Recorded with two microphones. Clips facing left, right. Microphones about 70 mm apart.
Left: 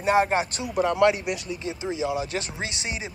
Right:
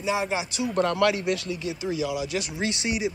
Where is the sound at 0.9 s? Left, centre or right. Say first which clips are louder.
Left 2 dB; left.